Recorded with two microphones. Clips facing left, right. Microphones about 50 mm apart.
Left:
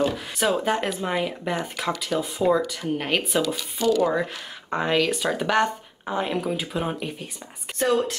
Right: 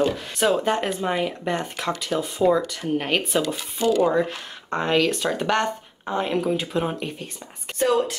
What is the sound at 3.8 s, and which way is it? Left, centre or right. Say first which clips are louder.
Speech: right 1 dB; centre.